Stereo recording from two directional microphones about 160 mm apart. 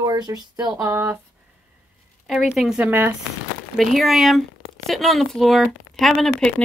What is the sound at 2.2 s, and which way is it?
Speech, centre (ahead or behind).